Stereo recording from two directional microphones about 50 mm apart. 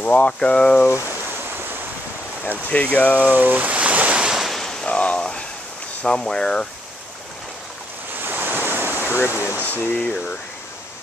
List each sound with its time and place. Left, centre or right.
0.0 s speech: left
2.7 s speech: left
3.2 s ocean: right
4.5 s a sound: centre
4.8 s a sound: left
6.0 s speech: centre
8.2 s waves: right
9.0 s speech: left
9.6 s speech: left